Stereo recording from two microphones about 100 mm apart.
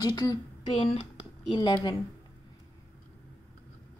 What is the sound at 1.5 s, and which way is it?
Speech, 45° left (ahead or behind).